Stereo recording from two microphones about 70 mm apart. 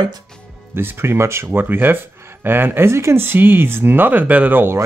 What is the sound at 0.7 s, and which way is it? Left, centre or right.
Speech, right.